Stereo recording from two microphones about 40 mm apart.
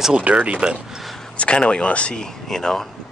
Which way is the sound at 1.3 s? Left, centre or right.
Left.